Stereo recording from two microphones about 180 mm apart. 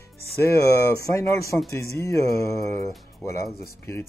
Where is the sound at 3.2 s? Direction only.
Centre (ahead or behind).